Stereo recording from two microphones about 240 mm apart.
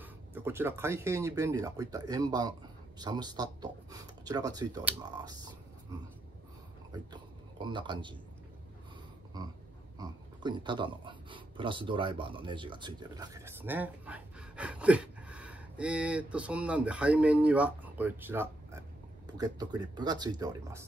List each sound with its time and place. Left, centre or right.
0.0 s speech: centre
6.9 s a sound: centre
9.3 s speech: centre